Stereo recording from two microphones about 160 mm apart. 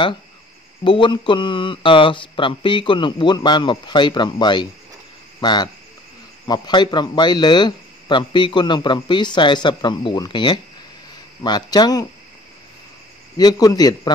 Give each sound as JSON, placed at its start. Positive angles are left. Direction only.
{"t": 0.8, "sound": "a man's voice", "side_deg": 30}
{"t": 13.4, "sound": "a man's voice", "side_deg": 25}